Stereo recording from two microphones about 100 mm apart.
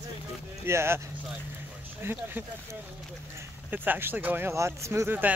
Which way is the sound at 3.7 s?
20° right (ahead or behind).